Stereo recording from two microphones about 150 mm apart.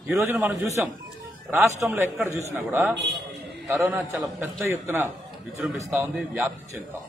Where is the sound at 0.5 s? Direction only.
20° right (ahead or behind).